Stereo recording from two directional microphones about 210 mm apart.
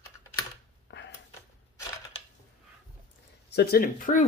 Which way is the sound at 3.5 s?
50° left (ahead or behind).